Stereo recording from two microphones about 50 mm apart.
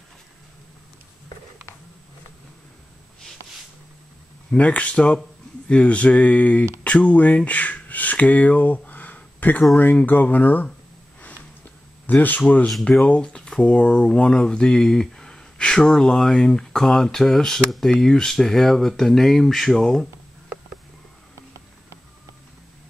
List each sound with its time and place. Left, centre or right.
4.6 s speech: left
12.1 s speech: left; by 20.1 s centre